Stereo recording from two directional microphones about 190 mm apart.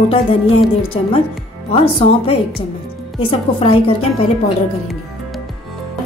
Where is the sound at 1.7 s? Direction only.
30° left (ahead or behind).